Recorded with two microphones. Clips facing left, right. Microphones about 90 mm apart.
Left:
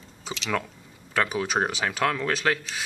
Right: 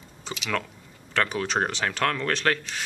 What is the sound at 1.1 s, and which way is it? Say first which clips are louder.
Speech: even; 10° left (ahead or behind).